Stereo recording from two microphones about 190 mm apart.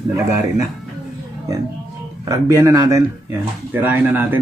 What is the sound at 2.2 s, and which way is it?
Speech, 15° right (ahead or behind).